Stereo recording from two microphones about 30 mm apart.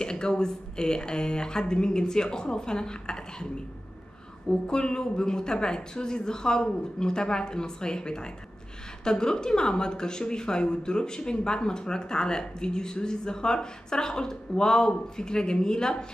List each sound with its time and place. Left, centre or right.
0.0 s speech: left
4.5 s speech: left